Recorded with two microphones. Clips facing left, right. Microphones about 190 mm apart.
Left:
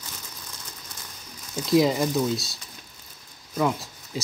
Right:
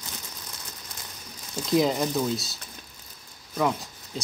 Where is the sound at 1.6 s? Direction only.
Centre (ahead or behind).